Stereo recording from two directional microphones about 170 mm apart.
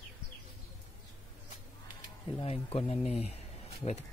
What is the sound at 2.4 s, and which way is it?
Speech, 35° left (ahead or behind).